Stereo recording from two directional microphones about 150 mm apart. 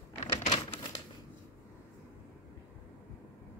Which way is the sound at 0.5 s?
35° left (ahead or behind).